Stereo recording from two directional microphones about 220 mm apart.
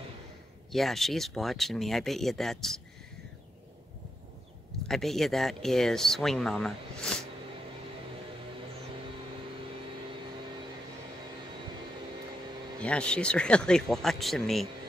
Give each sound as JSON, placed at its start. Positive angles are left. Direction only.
{"t": 0.7, "sound": "speech", "side_deg": 0}
{"t": 4.8, "sound": "speech", "side_deg": 0}
{"t": 12.8, "sound": "speech", "side_deg": 5}